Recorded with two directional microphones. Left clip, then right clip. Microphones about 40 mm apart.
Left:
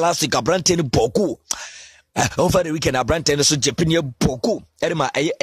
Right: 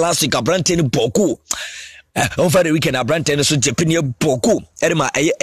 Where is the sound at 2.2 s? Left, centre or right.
Left.